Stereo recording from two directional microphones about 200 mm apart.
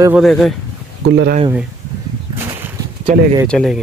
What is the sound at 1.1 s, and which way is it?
Speech, 60° right (ahead or behind).